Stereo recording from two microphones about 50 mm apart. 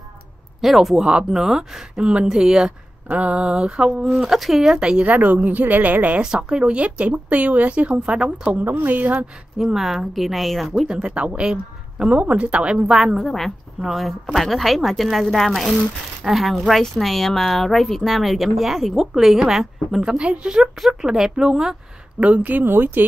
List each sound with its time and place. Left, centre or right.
0.6 s speech: centre
1.0 s a woman's voice: centre
3.1 s speech: right
4.2 s a woman's voice: centre
4.7 s a woman's voice: centre
5.0 s a woman's voice: right
6.2 s speech: centre
8.5 s a woman's voice: right
9.6 s a woman's voice: centre
10.9 s speech: centre
13.2 s a woman's voice: centre
22.2 s a woman's voice: right
22.7 s speech: right